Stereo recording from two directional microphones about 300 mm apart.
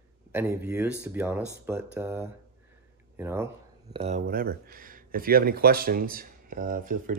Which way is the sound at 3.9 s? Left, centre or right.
Right.